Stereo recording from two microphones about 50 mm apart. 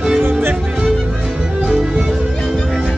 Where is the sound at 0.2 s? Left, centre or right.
Right.